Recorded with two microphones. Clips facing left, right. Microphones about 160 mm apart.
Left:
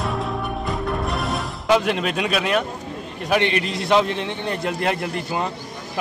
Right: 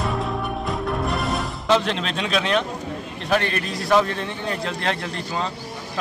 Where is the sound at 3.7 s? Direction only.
20° left (ahead or behind).